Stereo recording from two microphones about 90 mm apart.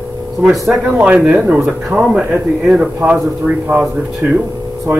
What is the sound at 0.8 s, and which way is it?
Speech, 20° right (ahead or behind).